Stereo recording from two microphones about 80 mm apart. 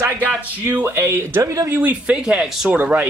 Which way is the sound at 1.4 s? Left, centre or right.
Right.